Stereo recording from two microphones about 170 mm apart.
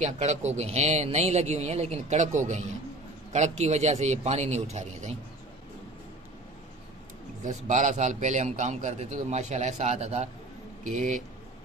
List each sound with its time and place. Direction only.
0.0 s speech: 40° right (ahead or behind)
7.4 s a man's voice: 45° right (ahead or behind)